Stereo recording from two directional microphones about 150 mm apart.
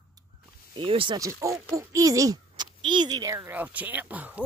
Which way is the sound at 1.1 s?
20° right (ahead or behind).